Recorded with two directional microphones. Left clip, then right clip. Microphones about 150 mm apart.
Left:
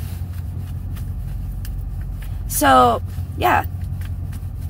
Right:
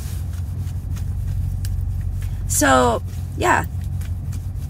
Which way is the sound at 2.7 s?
25° right (ahead or behind).